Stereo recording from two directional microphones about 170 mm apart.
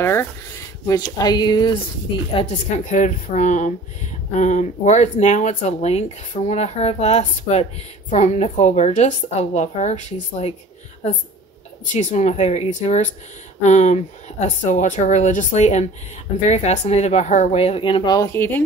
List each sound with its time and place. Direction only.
0.0 s speech: 15° left (ahead or behind)
2.3 s a woman's voice: 45° left (ahead or behind)
11.9 s a woman's voice: 45° left (ahead or behind); by 18.6 s 15° left (ahead or behind)